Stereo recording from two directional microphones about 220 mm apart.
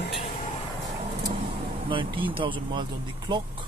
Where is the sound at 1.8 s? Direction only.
20° right (ahead or behind).